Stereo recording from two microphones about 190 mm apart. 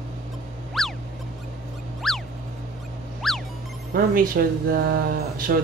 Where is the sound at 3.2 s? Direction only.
Centre (ahead or behind).